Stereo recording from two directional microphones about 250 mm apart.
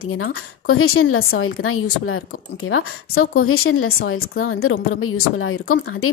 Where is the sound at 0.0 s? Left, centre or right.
Left.